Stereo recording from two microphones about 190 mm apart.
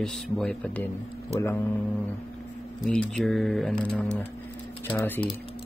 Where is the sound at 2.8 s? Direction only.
5° left (ahead or behind).